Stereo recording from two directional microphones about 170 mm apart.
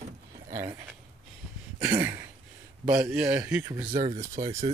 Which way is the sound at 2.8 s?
20° right (ahead or behind).